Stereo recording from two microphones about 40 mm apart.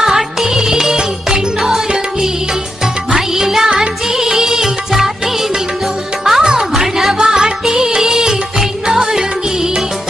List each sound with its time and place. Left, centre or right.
0.0 s music: centre
3.7 s music: right
4.2 s music: centre